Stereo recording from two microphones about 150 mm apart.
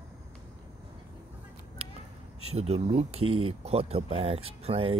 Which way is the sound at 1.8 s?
40° right (ahead or behind).